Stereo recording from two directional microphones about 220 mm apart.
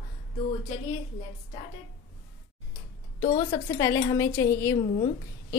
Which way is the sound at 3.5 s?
10° left (ahead or behind).